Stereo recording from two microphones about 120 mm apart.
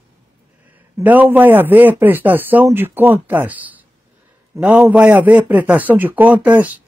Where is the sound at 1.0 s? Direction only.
15° right (ahead or behind).